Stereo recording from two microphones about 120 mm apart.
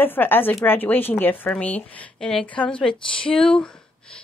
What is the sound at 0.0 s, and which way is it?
Speech, 15° left (ahead or behind).